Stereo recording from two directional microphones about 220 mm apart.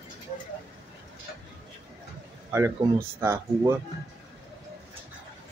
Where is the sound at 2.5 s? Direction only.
10° right (ahead or behind).